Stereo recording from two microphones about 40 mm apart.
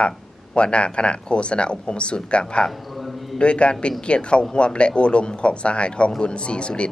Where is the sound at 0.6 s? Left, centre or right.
Left.